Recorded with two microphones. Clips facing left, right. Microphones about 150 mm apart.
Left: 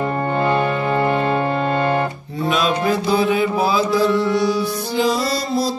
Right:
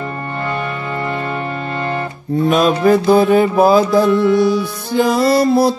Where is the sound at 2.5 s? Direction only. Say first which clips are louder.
Right 6 dB; 50° right (ahead or behind).